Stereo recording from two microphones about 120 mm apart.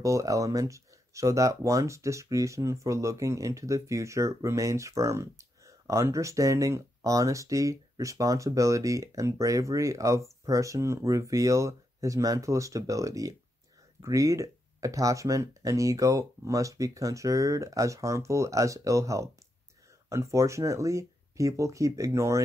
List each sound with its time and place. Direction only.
0.0 s speech: 25° right (ahead or behind)